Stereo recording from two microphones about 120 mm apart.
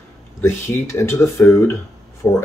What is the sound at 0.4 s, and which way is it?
Speech, 20° left (ahead or behind).